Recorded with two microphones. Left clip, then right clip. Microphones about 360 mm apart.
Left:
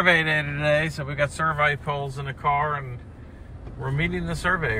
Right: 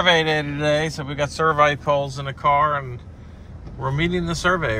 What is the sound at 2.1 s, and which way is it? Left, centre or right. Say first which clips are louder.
Speech: right 5 dB; centre.